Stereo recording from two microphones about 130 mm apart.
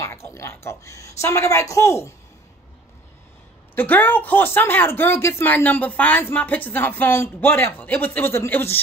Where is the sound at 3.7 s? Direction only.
15° left (ahead or behind).